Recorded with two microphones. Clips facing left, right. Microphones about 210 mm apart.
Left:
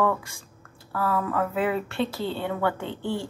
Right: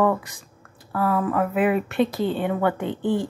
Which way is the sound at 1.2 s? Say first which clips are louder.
Right 4 dB; 15° right (ahead or behind).